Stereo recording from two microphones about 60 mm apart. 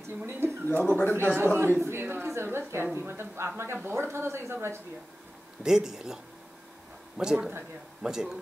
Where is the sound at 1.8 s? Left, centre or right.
Right.